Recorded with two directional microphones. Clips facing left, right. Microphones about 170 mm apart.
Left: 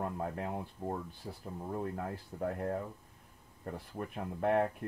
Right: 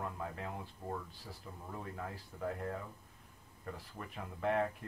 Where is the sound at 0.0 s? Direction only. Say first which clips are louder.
Left 5 dB; 45° left (ahead or behind).